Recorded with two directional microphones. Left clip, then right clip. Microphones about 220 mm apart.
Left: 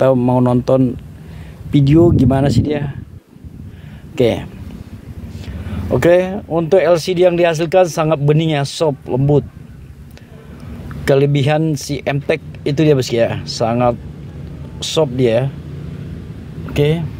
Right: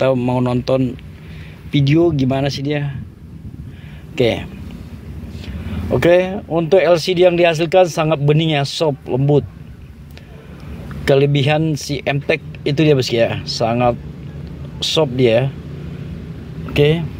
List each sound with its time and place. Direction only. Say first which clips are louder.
0.0 s speech: left 3 dB; 15° left (ahead or behind)
4.1 s speech: left 2 dB; 15° left (ahead or behind)
5.7 s speech: left 1 dB; 10° left (ahead or behind)
11.1 s speech: even; 10° left (ahead or behind)
16.7 s speech: right 2 dB; centre (ahead or behind)